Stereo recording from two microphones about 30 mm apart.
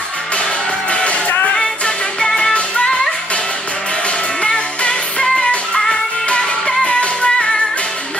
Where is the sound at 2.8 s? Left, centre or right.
Left.